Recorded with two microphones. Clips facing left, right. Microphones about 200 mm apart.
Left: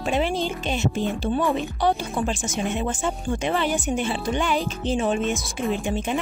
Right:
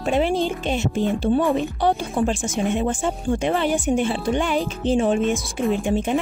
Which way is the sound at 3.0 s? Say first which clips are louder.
Right 3 dB; 50° right (ahead or behind).